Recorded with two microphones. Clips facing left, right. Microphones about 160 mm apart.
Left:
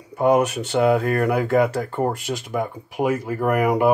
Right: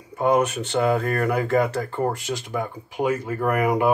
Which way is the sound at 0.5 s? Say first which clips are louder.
Left 3 dB; 5° left (ahead or behind).